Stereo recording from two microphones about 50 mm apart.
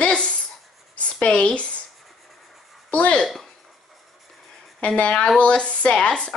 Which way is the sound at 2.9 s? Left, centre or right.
Left.